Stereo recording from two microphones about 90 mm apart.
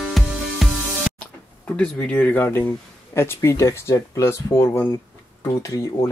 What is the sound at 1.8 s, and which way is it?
Speech, 15° left (ahead or behind).